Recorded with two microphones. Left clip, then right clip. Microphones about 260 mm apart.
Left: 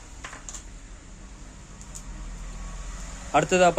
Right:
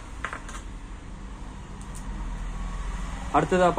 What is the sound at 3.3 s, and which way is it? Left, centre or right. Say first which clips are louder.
Speech: left 2 dB; left.